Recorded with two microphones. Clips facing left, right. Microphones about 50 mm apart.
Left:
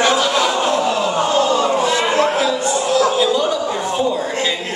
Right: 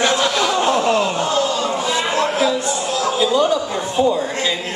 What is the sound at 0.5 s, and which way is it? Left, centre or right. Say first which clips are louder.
Speech: even; centre.